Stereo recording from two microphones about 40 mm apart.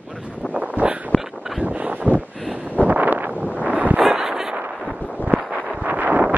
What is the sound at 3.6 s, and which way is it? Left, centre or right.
Wind noise, right.